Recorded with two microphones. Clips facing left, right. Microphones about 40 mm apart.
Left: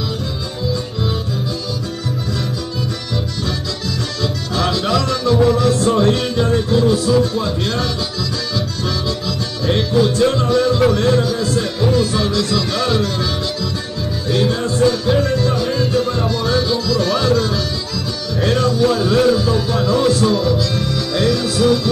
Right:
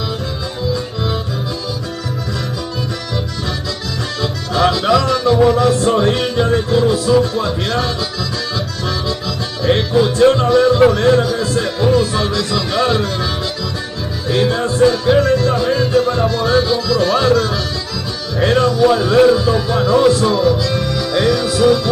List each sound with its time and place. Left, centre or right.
4.2 s music: centre
9.7 s music: right
10.0 s music: centre
14.4 s music: centre
15.5 s music: centre